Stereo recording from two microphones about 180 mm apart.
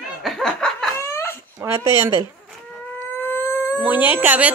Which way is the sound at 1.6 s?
15° right (ahead or behind).